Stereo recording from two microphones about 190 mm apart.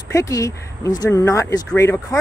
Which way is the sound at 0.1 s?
15° left (ahead or behind).